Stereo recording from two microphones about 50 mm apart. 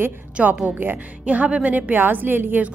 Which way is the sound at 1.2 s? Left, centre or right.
Right.